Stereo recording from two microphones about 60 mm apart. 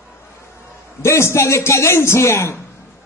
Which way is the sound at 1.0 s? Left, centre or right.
Left.